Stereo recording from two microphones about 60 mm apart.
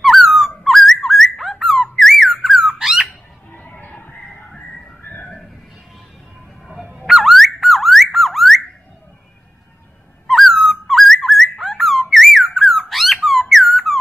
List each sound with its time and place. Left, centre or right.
0.0 s a sound: centre
3.1 s bird: left
4.5 s music: centre
5.0 s a sound: left
6.7 s fowl: centre
7.0 s car alarm: centre
10.2 s whistling: centre